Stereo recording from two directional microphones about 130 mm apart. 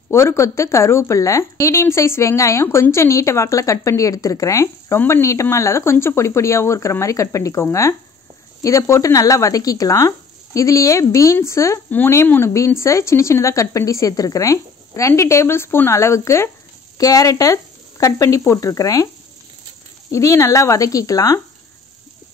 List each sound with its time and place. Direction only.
0.1 s speech: 20° left (ahead or behind)
20.1 s speech: 25° left (ahead or behind)